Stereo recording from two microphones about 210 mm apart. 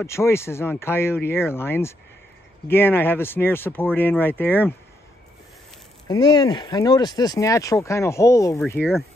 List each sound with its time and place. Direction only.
0.0 s speech: 10° left (ahead or behind)
6.0 s speech: 20° left (ahead or behind)
8.8 s speech: 5° right (ahead or behind)